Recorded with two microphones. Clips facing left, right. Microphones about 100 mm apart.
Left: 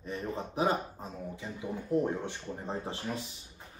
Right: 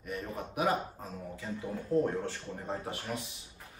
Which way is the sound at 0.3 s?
30° left (ahead or behind).